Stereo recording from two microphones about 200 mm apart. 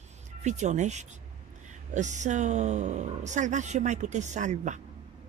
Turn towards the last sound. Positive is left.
turn(degrees=-35)  # may be behind; listen again after turning